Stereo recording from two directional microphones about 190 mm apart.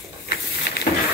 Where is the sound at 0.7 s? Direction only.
60° left (ahead or behind).